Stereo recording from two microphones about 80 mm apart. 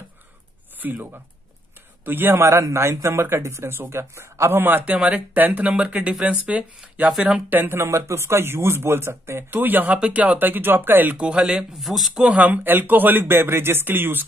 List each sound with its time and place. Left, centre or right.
0.7 s a man's voice: right; by 7.4 s centre
7.4 s a man's voice: right
9.8 s a man's voice: centre
11.1 s speech: centre
12.3 s a man's voice: centre